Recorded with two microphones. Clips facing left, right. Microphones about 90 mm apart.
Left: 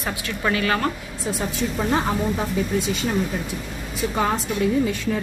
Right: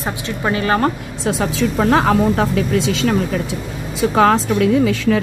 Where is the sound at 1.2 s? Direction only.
90° right.